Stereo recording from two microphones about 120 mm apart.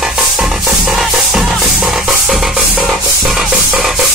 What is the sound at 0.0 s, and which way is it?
Music, 5° right (ahead or behind).